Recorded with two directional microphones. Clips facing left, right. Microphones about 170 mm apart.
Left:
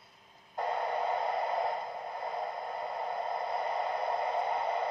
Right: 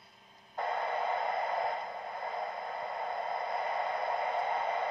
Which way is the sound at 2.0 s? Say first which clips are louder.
Left 1 dB; 15° left (ahead or behind).